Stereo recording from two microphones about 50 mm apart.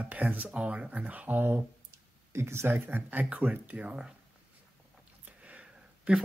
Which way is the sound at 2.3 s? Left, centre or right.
Right.